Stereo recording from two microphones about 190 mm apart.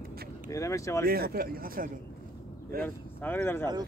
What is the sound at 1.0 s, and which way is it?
Speech, 55° right (ahead or behind).